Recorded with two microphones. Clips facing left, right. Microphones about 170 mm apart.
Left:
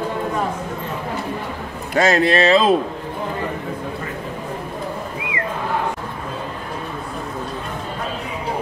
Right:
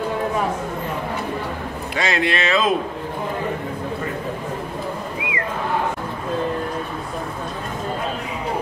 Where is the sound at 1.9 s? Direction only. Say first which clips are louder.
Left 6 dB; 45° left (ahead or behind).